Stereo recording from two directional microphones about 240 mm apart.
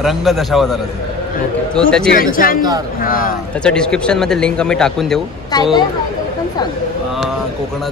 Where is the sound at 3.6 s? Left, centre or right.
Centre.